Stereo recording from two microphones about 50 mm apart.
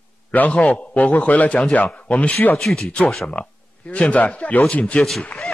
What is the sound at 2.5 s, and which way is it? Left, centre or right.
Speech, centre.